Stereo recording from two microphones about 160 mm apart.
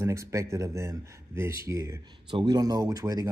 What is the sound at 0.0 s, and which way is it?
Speech, 20° right (ahead or behind).